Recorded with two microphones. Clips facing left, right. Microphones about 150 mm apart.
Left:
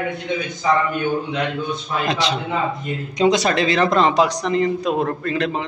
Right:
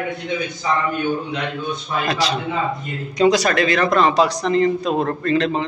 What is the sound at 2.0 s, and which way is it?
Speech, 25° left (ahead or behind).